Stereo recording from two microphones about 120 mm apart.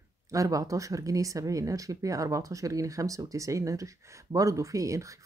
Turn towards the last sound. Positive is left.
turn(degrees=-25)  # may be behind; listen again after turning